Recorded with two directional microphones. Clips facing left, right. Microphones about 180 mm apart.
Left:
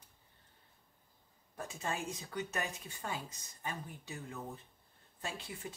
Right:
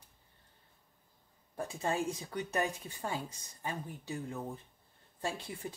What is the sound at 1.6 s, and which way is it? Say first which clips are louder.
Speech: right 6 dB; 30° right (ahead or behind).